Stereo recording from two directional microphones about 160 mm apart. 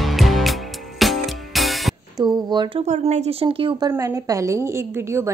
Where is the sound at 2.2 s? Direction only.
25° right (ahead or behind).